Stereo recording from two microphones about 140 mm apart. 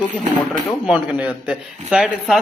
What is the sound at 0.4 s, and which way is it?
Speech, centre (ahead or behind).